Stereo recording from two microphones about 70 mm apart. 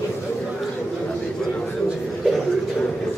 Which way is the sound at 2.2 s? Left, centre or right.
Centre.